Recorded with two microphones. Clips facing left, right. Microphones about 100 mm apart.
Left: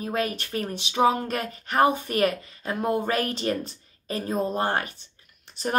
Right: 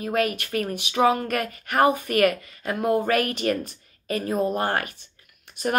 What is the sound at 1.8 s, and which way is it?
Speech, 30° left (ahead or behind).